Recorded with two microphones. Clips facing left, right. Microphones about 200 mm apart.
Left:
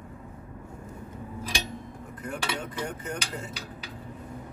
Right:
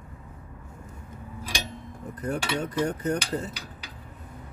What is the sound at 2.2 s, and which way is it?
Cutlery, 40° right (ahead or behind).